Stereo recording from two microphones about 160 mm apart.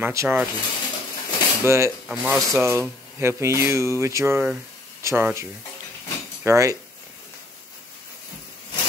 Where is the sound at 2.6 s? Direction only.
15° right (ahead or behind).